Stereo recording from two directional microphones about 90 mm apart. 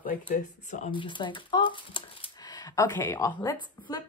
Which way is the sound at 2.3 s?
45° left (ahead or behind).